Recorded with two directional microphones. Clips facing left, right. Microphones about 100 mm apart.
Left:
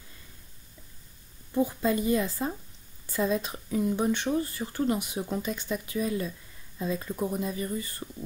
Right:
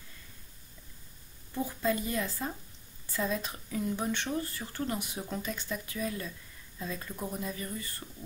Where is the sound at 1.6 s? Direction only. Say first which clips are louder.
Left 3 dB; 20° left (ahead or behind).